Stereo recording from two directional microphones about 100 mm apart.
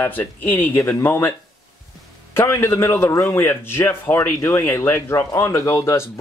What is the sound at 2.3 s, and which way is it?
A man's voice, 25° left (ahead or behind).